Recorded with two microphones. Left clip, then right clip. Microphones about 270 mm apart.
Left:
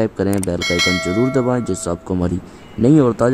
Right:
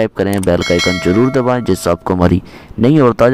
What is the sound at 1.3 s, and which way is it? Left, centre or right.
Speech, right.